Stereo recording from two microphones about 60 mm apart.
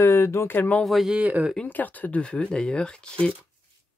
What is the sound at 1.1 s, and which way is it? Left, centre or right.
Speech, right.